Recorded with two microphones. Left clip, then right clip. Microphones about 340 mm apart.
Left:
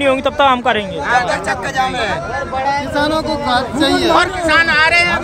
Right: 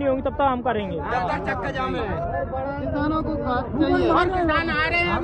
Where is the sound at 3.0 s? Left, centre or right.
Left.